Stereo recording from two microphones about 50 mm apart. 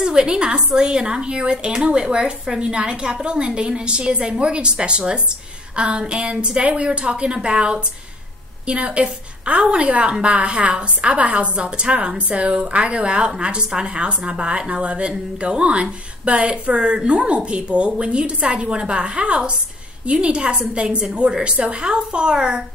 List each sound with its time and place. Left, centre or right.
0.0 s a woman's voice: centre